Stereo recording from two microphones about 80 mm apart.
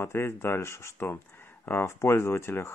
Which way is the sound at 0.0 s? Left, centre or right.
Left.